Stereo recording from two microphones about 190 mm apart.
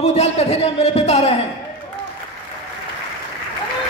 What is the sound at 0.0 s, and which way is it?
A man's voice, 35° left (ahead or behind).